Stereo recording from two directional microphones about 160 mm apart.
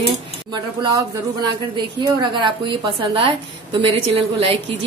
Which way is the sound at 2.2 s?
30° right (ahead or behind).